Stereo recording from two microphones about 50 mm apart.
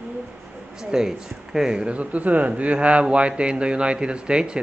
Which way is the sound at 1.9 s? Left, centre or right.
Right.